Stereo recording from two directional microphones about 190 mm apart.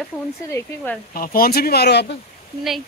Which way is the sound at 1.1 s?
50° left (ahead or behind).